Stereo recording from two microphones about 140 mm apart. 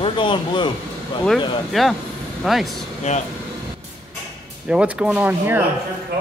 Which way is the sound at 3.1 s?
50° left (ahead or behind).